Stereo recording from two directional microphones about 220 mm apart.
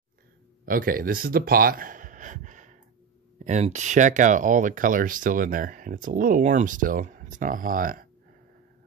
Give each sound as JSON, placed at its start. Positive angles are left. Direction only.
{"t": 0.7, "sound": "speech", "side_deg": -40}